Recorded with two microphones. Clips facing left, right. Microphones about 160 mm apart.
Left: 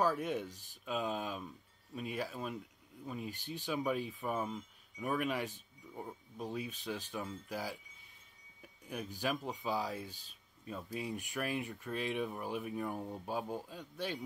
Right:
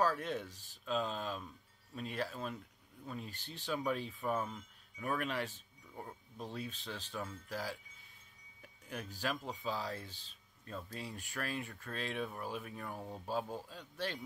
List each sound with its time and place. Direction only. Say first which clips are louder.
0.0 s speech: left 1 dB; 15° left (ahead or behind)
8.8 s speech: left 2 dB; 15° left (ahead or behind)